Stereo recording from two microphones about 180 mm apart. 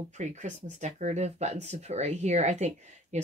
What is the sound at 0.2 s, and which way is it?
Speech, 40° right (ahead or behind).